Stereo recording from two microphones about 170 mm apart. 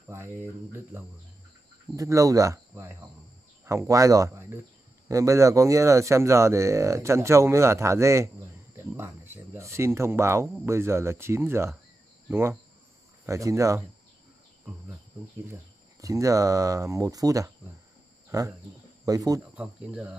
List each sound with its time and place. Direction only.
0.1 s speech: 15° right (ahead or behind)
15.5 s speech: 20° right (ahead or behind)
19.5 s speech: 5° right (ahead or behind)